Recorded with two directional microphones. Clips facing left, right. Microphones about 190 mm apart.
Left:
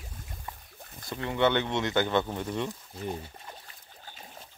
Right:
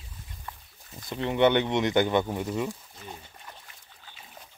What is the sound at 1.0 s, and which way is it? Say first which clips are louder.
Speech: right 4 dB; 20° right (ahead or behind).